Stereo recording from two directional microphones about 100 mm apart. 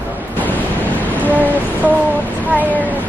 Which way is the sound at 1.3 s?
15° right (ahead or behind).